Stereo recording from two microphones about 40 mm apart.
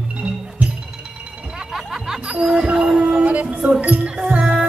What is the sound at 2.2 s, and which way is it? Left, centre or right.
Music, right.